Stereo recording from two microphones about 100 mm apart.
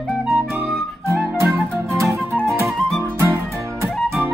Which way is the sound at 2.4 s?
25° right (ahead or behind).